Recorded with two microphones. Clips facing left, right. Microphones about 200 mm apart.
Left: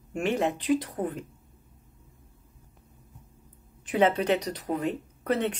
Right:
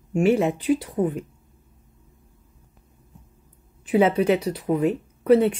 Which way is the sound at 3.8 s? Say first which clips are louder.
Right 5 dB; 10° right (ahead or behind).